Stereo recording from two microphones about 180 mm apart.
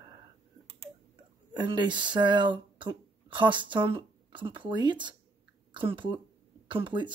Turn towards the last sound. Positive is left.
turn(degrees=-25)  # may be behind; listen again after turning